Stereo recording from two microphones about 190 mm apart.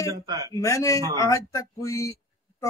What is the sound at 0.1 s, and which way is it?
Speech, 20° right (ahead or behind).